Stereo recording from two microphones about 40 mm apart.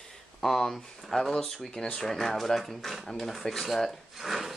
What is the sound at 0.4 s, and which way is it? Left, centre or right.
Speech, centre.